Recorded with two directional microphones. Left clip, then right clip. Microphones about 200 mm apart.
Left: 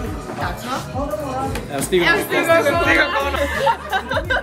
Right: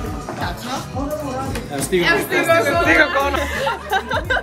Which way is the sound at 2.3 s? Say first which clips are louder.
Even; 45° left (ahead or behind).